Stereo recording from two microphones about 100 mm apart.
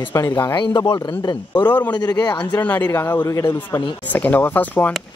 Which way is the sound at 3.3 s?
35° left (ahead or behind).